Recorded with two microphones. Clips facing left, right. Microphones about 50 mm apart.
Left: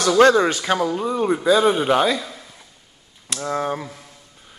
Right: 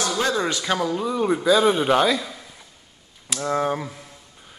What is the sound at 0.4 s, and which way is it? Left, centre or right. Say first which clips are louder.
Speech: left 5 dB; left.